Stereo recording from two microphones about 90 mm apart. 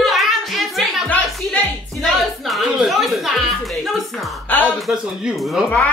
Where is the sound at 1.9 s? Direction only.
Centre (ahead or behind).